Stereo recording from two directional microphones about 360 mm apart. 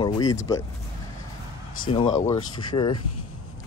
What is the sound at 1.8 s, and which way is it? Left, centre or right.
Speech, centre.